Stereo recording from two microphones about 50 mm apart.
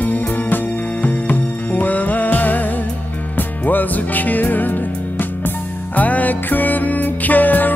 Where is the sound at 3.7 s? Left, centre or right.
Left.